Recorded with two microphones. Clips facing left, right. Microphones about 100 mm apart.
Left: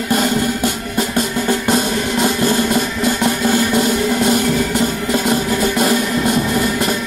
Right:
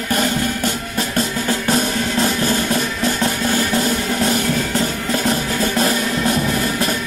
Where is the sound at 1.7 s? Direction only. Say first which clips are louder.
Left 2 dB; 15° left (ahead or behind).